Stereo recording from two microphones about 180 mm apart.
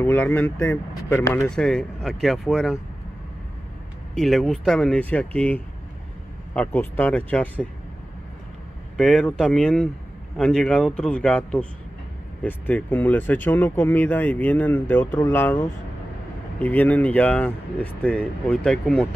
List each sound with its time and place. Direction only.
0.0 s speech: 10° left (ahead or behind)
4.1 s speech: 5° left (ahead or behind)
8.9 s speech: 5° left (ahead or behind)